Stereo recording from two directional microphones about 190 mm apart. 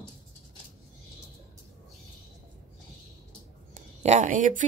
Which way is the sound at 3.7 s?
40° right (ahead or behind).